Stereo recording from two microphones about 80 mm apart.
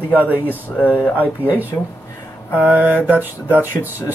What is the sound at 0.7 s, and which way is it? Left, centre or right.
Speech, centre.